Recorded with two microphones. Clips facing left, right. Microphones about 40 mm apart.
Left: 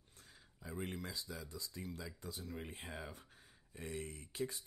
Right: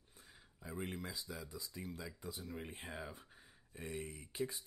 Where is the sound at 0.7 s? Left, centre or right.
Centre.